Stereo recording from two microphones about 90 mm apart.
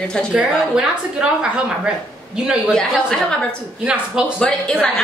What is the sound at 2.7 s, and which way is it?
Speech, 5° left (ahead or behind).